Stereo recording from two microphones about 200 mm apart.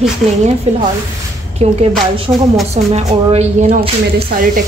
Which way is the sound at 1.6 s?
30° right (ahead or behind).